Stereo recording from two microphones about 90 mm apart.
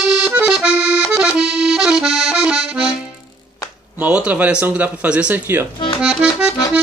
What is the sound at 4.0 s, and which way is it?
Accordion, 15° right (ahead or behind).